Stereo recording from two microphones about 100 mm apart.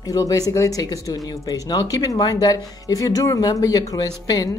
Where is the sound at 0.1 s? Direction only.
35° left (ahead or behind).